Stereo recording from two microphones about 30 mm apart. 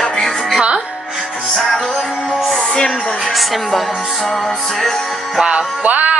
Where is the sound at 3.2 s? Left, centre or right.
Centre.